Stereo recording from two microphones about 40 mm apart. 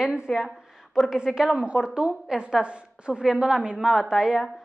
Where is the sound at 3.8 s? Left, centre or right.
Centre.